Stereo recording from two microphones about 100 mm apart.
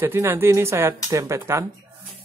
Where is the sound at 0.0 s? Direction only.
25° right (ahead or behind).